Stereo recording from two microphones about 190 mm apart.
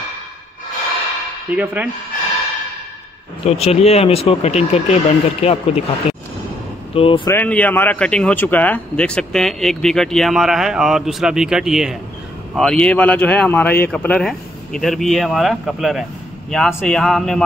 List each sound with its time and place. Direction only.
1.5 s speech: 10° right (ahead or behind)
3.4 s speech: 35° left (ahead or behind)
6.9 s speech: 30° left (ahead or behind)
7.2 s speech: 10° left (ahead or behind)